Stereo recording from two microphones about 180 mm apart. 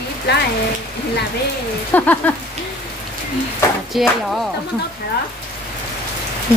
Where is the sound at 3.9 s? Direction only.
Centre (ahead or behind).